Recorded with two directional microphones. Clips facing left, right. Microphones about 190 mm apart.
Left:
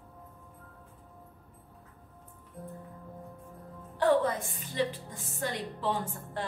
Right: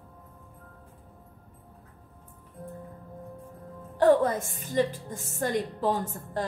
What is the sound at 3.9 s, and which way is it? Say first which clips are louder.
A woman's voice: right 5 dB; 45° right (ahead or behind).